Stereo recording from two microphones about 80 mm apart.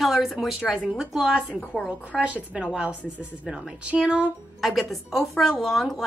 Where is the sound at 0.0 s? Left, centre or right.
Centre.